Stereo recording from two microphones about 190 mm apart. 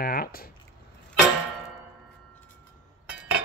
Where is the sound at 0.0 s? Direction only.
50° left (ahead or behind).